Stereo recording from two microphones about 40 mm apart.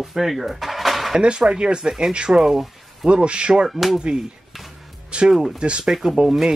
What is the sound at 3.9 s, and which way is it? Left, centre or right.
Speech, centre.